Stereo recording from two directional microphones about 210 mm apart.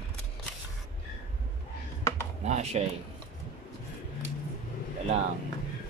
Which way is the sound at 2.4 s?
30° right (ahead or behind).